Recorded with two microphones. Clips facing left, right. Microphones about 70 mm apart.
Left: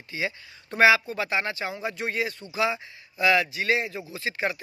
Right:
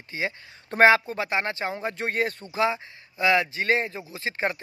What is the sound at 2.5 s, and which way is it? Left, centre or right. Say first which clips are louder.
Speech: right 1 dB; right.